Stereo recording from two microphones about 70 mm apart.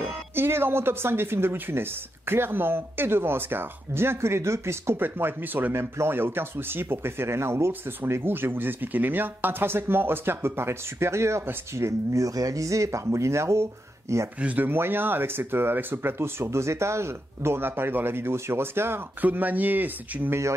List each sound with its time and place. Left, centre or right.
0.3 s speech: right
14.4 s speech: right
19.2 s speech: right